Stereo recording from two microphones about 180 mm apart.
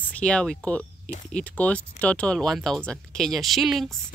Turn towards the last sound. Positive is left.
turn(degrees=0)  # may be behind; listen again after turning